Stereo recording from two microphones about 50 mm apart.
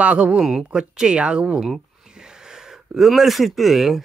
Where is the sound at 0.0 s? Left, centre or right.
Right.